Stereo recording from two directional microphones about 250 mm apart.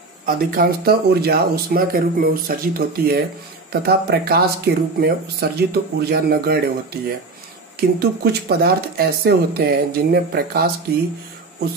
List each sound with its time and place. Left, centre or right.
0.2 s speech: right
8.0 s speech: right